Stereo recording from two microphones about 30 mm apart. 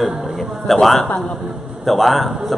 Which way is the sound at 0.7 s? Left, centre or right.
Centre.